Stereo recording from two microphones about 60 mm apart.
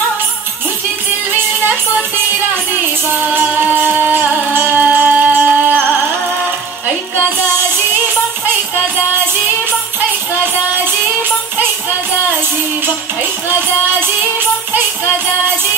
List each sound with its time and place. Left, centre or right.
3.7 s music: right